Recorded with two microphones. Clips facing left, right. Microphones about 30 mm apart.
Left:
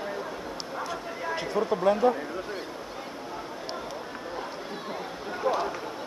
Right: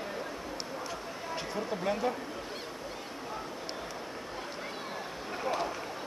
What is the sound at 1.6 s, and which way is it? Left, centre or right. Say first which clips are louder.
Speech: left 10 dB; left.